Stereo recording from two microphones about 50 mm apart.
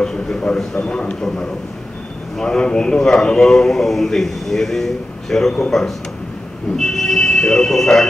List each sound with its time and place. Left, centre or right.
0.0 s a man's voice: centre